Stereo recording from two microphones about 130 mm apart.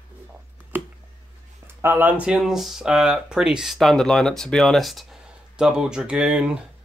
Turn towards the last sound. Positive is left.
turn(degrees=-5)  # may be behind; listen again after turning